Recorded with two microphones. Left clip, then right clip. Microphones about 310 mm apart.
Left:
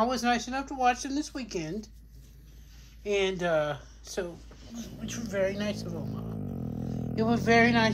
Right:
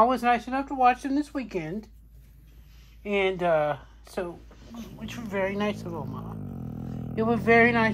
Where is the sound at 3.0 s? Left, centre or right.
Centre.